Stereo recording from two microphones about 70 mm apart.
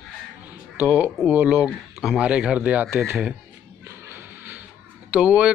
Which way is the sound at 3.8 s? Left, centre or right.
Right.